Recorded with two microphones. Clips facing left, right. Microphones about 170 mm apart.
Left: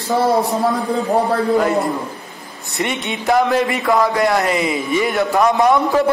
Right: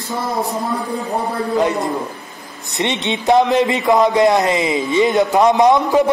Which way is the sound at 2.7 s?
25° right (ahead or behind).